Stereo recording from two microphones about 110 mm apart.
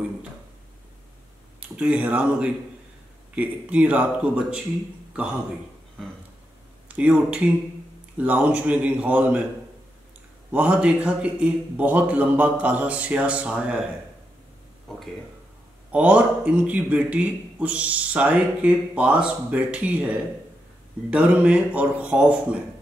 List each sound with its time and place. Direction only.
1.6 s a man's voice: 15° right (ahead or behind)
6.9 s a man's voice: 10° right (ahead or behind)
10.5 s a man's voice: 10° right (ahead or behind)
15.9 s a man's voice: 10° right (ahead or behind)